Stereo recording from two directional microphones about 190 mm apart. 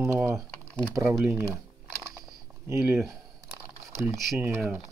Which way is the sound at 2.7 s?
15° right (ahead or behind).